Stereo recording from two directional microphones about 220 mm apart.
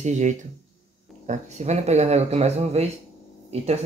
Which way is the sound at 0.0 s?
35° right (ahead or behind).